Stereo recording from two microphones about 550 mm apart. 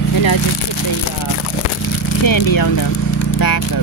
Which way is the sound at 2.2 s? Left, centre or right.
Left.